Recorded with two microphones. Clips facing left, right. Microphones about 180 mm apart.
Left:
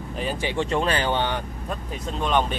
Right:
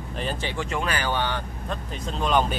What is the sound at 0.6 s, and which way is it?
Speech, 30° left (ahead or behind).